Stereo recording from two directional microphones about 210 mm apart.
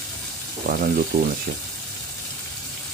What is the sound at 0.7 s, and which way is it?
Speech, 45° right (ahead or behind).